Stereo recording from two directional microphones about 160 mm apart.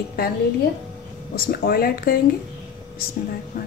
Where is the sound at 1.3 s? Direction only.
70° left (ahead or behind).